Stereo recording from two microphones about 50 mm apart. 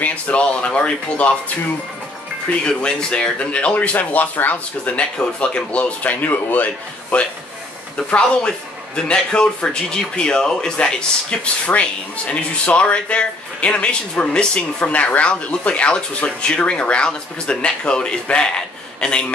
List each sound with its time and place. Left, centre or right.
0.0 s a man's voice: left
2.6 s a man's voice: centre; by 4.9 s left
4.9 s a man's voice: left
8.2 s a man's voice: centre